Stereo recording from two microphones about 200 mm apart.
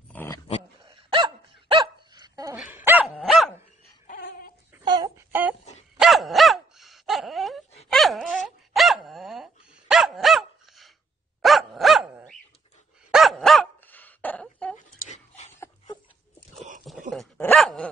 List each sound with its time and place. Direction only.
0.1 s dog: 10° left (ahead or behind)
0.8 s dog: 25° right (ahead or behind)
2.5 s dog: 5° right (ahead or behind)
3.2 s dog: centre (ahead or behind)
4.1 s a sound: 50° left (ahead or behind)
4.8 s a sound: 20° right (ahead or behind)
5.9 s dog: centre (ahead or behind)
15.0 s dog: 35° left (ahead or behind)
15.6 s dog: 20° left (ahead or behind)
17.1 s dog: 5° left (ahead or behind)